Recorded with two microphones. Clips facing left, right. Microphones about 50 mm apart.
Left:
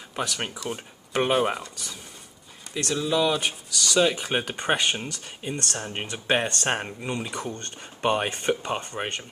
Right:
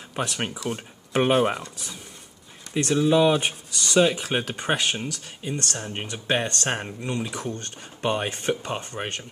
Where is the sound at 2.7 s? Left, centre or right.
Right.